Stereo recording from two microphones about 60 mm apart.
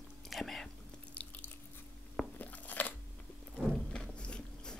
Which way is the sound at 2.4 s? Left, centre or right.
Left.